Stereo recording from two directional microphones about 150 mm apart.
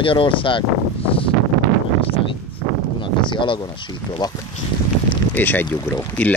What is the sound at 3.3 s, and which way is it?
Speech, 35° left (ahead or behind).